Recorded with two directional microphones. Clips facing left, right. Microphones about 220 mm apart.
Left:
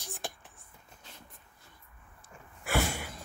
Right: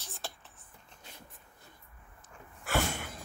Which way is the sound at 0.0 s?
15° left (ahead or behind).